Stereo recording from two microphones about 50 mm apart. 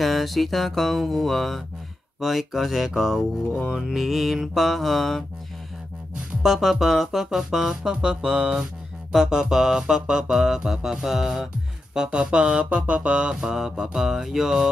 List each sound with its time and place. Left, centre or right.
0.0 s mantra: centre
6.4 s music: centre
9.1 s music: centre